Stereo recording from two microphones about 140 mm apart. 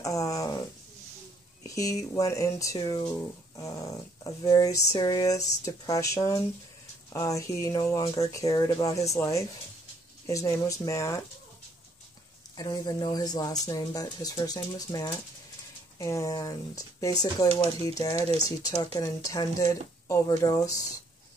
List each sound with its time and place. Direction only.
0.0 s a sound: 25° left (ahead or behind)
1.6 s speech: 25° left (ahead or behind)
12.5 s speech: 30° left (ahead or behind)